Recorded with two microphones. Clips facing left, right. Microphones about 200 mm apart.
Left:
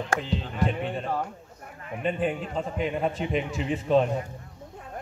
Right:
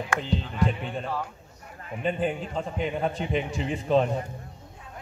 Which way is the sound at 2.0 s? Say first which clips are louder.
Even; centre (ahead or behind).